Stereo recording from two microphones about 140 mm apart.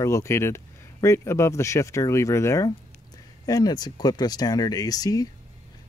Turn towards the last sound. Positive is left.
turn(degrees=25)  # may be behind; listen again after turning